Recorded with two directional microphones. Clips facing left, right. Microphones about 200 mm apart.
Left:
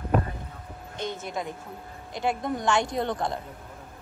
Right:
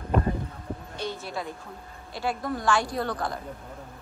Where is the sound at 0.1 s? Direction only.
5° left (ahead or behind).